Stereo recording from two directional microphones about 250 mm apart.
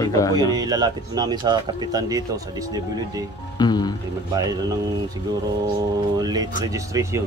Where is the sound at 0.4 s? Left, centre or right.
Centre.